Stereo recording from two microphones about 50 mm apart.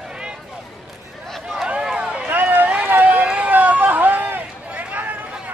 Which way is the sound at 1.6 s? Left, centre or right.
Centre.